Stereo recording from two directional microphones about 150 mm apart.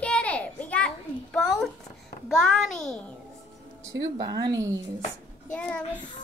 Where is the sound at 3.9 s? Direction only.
25° right (ahead or behind).